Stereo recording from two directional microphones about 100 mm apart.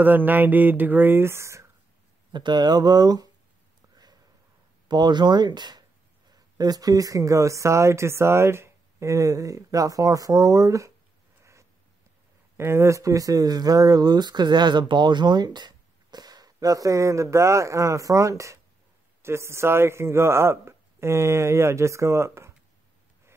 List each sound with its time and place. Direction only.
0.0 s speech: 20° right (ahead or behind)
2.3 s speech: 50° right (ahead or behind)
3.9 s a sound: 40° right (ahead or behind)
4.8 s speech: 45° right (ahead or behind)
12.5 s speech: 25° right (ahead or behind)